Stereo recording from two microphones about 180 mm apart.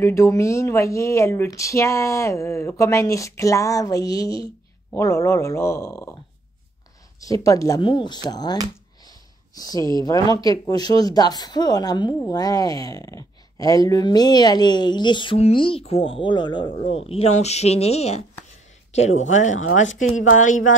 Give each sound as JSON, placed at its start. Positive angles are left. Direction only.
{"t": 0.0, "sound": "speech", "side_deg": 15}
{"t": 7.2, "sound": "speech", "side_deg": 20}
{"t": 9.6, "sound": "speech", "side_deg": 20}